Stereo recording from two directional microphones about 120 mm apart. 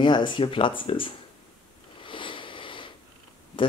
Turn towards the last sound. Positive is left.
turn(degrees=45)  # may be behind; listen again after turning